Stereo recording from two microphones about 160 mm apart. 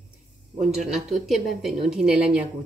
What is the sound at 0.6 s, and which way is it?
Speech, 5° right (ahead or behind).